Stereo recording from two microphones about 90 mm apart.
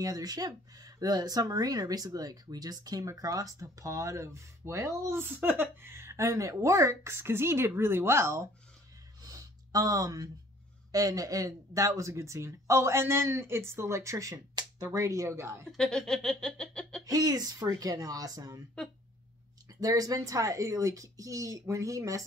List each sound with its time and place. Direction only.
0.0 s speech: 45° right (ahead or behind)
9.2 s a sound: 40° right (ahead or behind)
10.9 s speech: 40° right (ahead or behind)
15.7 s speech: 5° left (ahead or behind)
17.0 s speech: 45° right (ahead or behind)
19.8 s speech: 40° right (ahead or behind)